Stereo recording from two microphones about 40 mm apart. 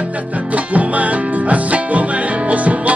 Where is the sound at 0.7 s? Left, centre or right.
Right.